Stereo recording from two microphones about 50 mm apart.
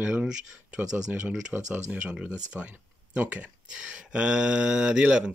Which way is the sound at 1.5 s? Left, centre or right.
Right.